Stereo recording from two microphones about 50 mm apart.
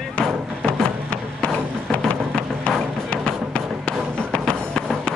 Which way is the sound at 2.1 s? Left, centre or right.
Left.